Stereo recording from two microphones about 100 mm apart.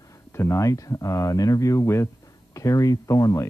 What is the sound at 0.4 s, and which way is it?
Speech, 30° left (ahead or behind).